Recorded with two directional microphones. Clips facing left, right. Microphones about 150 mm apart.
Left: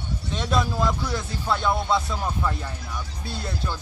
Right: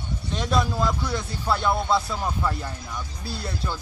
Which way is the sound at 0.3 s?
Centre (ahead or behind).